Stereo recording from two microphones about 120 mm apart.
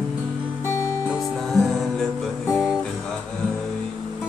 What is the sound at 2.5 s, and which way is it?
Music, 5° right (ahead or behind).